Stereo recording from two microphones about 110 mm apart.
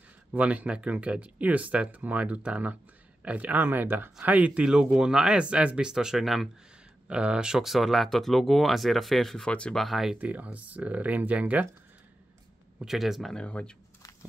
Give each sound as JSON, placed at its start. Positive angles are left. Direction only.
{"t": 0.3, "sound": "speech", "side_deg": -10}
{"t": 10.1, "sound": "speech", "side_deg": -15}
{"t": 12.7, "sound": "speech", "side_deg": -5}